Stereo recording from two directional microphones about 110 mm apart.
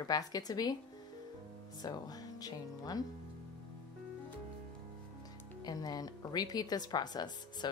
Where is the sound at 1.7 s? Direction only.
35° left (ahead or behind).